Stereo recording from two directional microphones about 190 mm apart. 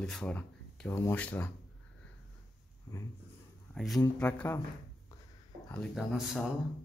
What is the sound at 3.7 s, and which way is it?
Speech, centre (ahead or behind).